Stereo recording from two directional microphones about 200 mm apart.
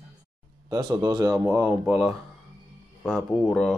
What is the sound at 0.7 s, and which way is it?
Speech, 15° right (ahead or behind).